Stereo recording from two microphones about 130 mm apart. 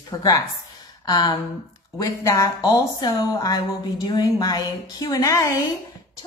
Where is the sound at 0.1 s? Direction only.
30° left (ahead or behind).